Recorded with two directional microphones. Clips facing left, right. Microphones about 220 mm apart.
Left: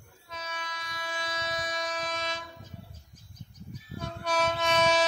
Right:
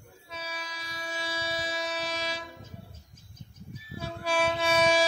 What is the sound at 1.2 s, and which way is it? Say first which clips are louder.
Train: right 1 dB; 10° right (ahead or behind).